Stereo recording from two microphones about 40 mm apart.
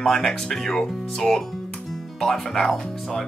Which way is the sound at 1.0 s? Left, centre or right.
Centre.